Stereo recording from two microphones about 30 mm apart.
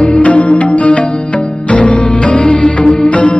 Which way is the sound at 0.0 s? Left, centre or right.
Left.